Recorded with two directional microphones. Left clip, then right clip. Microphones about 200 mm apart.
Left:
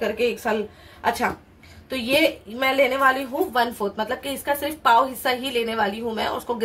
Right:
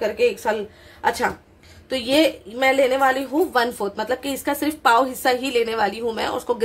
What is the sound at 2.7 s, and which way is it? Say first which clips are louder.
A woman's voice: right 1 dB; 45° right (ahead or behind).